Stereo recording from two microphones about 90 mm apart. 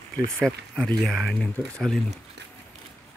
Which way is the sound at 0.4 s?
5° left (ahead or behind).